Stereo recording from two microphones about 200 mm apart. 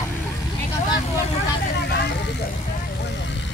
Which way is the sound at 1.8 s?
60° left (ahead or behind).